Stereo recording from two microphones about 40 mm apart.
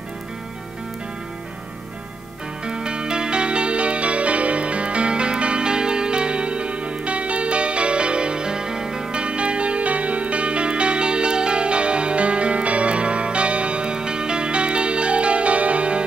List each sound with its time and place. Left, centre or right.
2.6 s music: right